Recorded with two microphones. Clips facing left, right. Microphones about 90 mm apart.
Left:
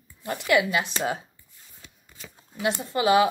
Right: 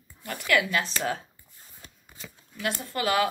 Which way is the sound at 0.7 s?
15° left (ahead or behind).